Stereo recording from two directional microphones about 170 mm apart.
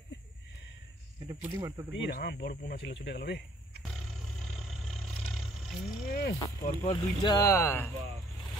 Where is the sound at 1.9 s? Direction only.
80° left.